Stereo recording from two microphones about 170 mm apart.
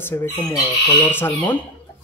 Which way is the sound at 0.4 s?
20° left (ahead or behind).